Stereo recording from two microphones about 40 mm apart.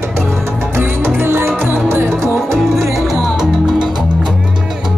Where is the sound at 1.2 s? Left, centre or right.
Right.